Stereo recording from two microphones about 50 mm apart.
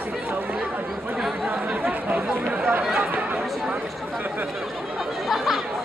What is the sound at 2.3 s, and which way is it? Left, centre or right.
Speech, right.